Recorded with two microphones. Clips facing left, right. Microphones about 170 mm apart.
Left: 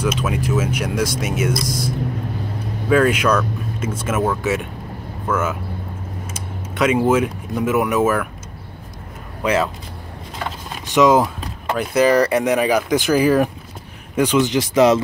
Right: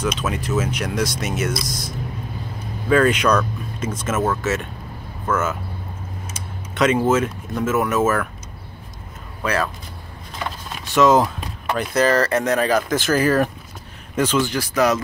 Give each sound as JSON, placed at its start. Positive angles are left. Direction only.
{"t": 0.0, "sound": "speech", "side_deg": 10}
{"t": 6.7, "sound": "speech", "side_deg": 10}
{"t": 9.4, "sound": "speech", "side_deg": 20}
{"t": 10.9, "sound": "speech", "side_deg": 15}